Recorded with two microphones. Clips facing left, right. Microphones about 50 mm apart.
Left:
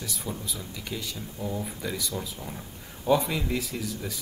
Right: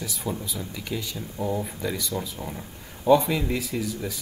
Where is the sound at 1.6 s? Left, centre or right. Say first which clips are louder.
Right 3 dB; centre.